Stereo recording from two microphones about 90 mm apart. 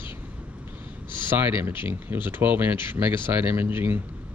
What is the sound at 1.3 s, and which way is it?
Speech, 25° right (ahead or behind).